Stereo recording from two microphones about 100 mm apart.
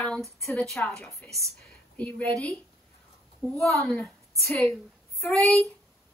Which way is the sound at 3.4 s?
5° left (ahead or behind).